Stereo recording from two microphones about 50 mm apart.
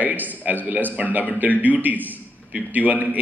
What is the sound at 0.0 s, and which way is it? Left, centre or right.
A man's voice, right.